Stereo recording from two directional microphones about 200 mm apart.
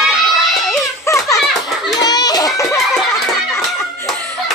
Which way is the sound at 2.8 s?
Centre (ahead or behind).